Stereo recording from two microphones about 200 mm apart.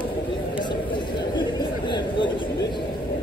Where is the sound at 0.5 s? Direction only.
25° left (ahead or behind).